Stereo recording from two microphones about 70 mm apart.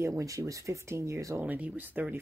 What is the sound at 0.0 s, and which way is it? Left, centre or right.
Speech, right.